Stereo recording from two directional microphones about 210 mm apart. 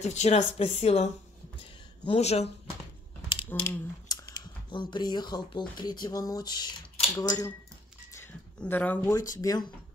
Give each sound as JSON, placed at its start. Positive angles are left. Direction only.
{"t": 0.0, "sound": "speech", "side_deg": 30}
{"t": 3.4, "sound": "speech", "side_deg": 10}
{"t": 8.1, "sound": "a sound", "side_deg": 10}
{"t": 9.4, "sound": "speech", "side_deg": 15}